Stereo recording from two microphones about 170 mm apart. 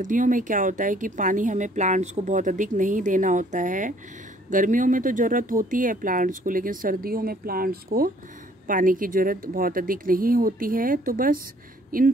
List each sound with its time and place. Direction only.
0.0 s speech: 50° right (ahead or behind)